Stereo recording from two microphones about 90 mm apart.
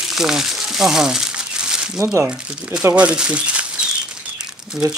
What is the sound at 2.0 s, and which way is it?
Speech, 25° right (ahead or behind).